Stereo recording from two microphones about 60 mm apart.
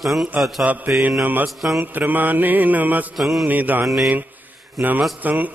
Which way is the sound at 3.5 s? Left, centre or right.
Right.